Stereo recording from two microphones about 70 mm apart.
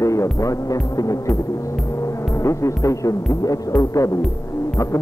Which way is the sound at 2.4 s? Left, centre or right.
Left.